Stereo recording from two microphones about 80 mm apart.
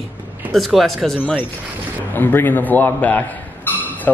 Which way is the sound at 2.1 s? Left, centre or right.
Left.